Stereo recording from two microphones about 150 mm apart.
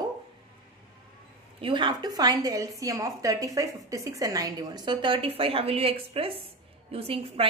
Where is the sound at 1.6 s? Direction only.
35° right (ahead or behind).